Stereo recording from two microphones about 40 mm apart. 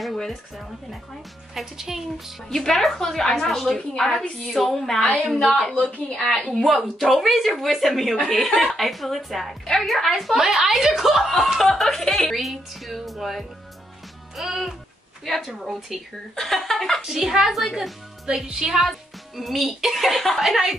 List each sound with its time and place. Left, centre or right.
1.5 s a woman's voice: centre
2.5 s a woman's voice: centre
5.5 s a woman's voice: centre
6.6 s a woman's voice: centre
14.3 s music: centre
15.2 s speech: centre
16.3 s a woman's voice: centre
17.0 s a woman's voice: centre
18.3 s speech: centre